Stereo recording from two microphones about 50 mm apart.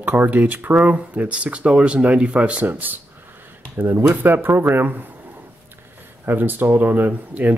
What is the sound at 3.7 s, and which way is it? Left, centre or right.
Speech, right.